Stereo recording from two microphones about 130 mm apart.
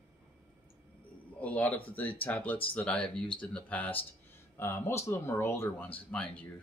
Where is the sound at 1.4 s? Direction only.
10° left (ahead or behind).